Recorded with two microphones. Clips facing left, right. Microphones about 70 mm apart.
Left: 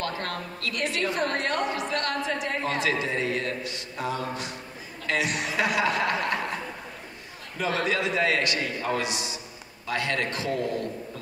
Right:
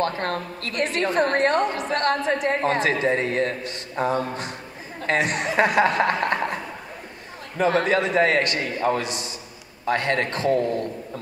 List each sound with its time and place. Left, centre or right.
0.0 s a woman's voice: right
7.5 s a woman's voice: right